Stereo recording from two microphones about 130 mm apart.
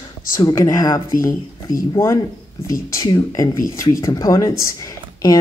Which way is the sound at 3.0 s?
25° left (ahead or behind).